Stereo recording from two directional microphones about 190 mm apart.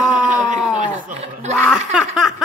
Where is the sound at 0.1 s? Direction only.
40° right (ahead or behind).